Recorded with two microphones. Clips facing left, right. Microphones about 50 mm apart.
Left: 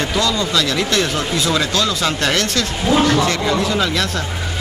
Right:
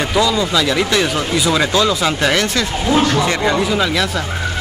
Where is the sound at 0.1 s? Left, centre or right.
Centre.